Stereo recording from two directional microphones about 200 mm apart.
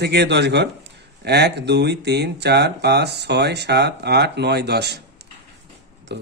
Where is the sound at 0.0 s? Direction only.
55° right (ahead or behind).